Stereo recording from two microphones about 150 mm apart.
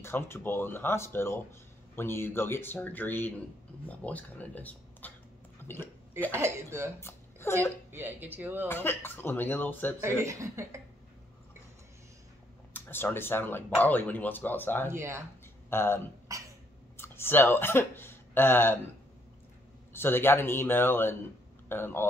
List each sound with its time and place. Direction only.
0.0 s speech: 15° left (ahead or behind)
6.3 s speech: 20° right (ahead or behind)
7.0 s a sound: 15° left (ahead or behind)
7.9 s speech: 15° right (ahead or behind)
8.6 s speech: 15° left (ahead or behind)
10.2 s speech: 20° right (ahead or behind)
12.7 s speech: 15° left (ahead or behind)
14.9 s speech: 20° right (ahead or behind)
15.7 s speech: 15° left (ahead or behind)
16.3 s throat clearing: 20° right (ahead or behind)
16.9 s speech: 15° left (ahead or behind)
19.9 s speech: 15° left (ahead or behind)